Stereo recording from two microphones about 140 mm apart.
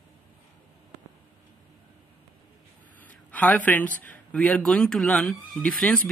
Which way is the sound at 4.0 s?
10° left (ahead or behind).